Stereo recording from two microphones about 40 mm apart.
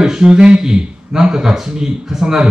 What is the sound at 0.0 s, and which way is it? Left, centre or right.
Speech, centre.